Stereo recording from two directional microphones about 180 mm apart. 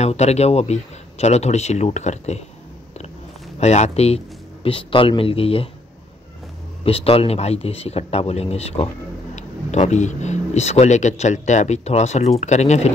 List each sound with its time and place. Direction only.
0.0 s speech: 35° left (ahead or behind)
3.5 s speech: 40° left (ahead or behind)
6.8 s speech: 30° left (ahead or behind)